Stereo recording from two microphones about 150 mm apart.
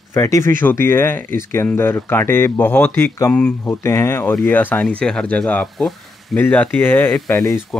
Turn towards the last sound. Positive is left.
turn(degrees=0)  # may be behind; listen again after turning